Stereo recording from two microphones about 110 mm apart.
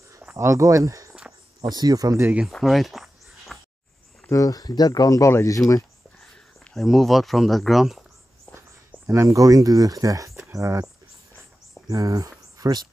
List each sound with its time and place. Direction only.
0.2 s speech: 25° right (ahead or behind)
2.4 s a sound: centre (ahead or behind)
4.3 s speech: 30° left (ahead or behind)
6.6 s speech: 5° left (ahead or behind)
8.5 s speech: 25° right (ahead or behind)
11.9 s speech: 30° right (ahead or behind)